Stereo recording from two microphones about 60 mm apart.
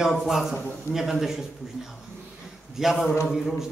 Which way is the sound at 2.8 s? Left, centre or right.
Centre.